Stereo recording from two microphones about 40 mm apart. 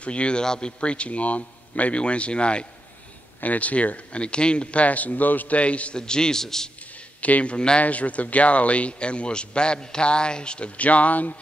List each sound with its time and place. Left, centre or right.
0.0 s a man's voice: left
3.3 s speech: left
5.6 s speech: left
5.9 s a man's voice: centre
7.2 s speech: left
7.5 s a man's voice: left
7.8 s a man's voice: left
10.8 s speech: left